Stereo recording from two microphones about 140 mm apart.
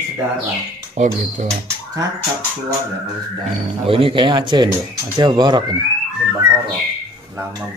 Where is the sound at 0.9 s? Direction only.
60° right (ahead or behind).